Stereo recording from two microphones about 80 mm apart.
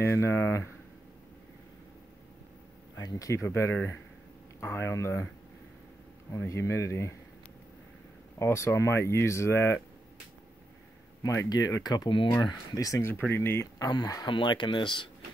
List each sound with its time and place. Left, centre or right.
0.0 s speech: left
3.0 s speech: left
6.3 s speech: left
8.4 s speech: left
11.4 s speech: left
12.1 s speech: left
12.4 s speech: left
13.3 s speech: left
13.7 s speech: left
14.3 s speech: left